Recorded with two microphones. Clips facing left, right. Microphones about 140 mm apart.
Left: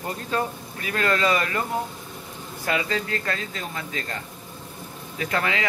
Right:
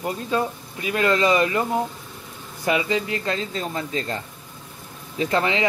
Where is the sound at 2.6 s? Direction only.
20° right (ahead or behind).